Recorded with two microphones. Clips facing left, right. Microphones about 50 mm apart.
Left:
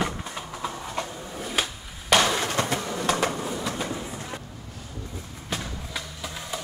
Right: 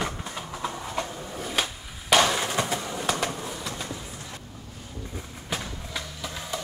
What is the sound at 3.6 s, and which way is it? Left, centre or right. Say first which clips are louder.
Train: left 5 dB; centre.